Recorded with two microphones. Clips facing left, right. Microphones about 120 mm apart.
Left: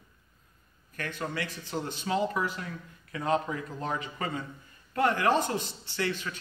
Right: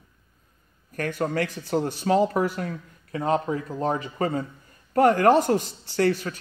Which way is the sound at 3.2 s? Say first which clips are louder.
Right 4 dB; 35° right (ahead or behind).